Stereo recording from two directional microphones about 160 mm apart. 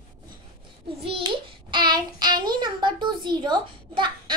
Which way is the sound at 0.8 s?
35° right (ahead or behind).